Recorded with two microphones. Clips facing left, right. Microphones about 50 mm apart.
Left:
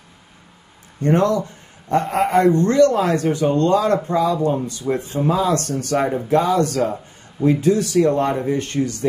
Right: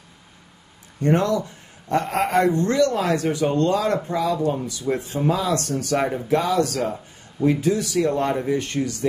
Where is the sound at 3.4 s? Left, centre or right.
Centre.